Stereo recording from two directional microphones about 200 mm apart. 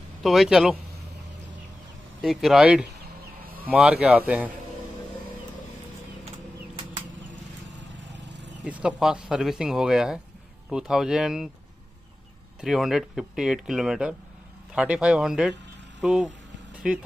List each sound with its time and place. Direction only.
0.2 s speech: centre (ahead or behind)
2.2 s speech: centre (ahead or behind)
3.4 s a sound: 45° right (ahead or behind)
3.7 s speech: 5° right (ahead or behind)
8.1 s vehicle: 60° right (ahead or behind)
8.6 s speech: 5° right (ahead or behind)
12.5 s speech: centre (ahead or behind)